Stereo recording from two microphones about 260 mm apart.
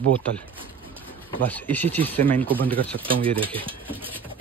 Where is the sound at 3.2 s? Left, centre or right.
Centre.